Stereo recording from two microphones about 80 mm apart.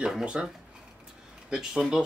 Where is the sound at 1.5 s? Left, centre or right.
Centre.